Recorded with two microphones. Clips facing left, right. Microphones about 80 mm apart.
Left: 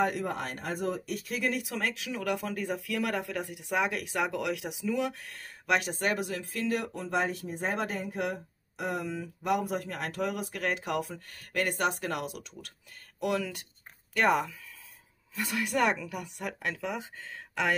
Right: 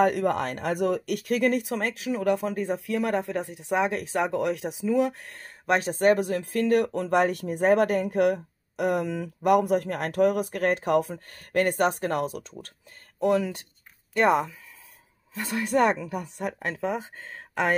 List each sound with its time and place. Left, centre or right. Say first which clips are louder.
0.0 s speech: right 7 dB; right